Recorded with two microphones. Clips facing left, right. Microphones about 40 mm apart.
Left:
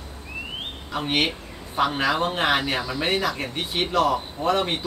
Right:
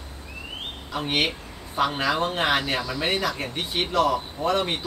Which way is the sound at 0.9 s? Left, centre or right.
Centre.